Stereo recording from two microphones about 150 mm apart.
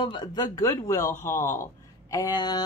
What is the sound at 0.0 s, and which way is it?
Speech, 30° left (ahead or behind).